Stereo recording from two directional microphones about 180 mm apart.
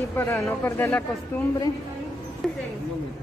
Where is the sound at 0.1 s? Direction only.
15° left (ahead or behind).